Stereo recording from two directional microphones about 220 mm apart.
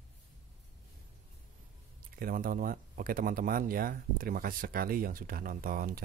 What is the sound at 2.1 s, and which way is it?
Speech, 40° right (ahead or behind).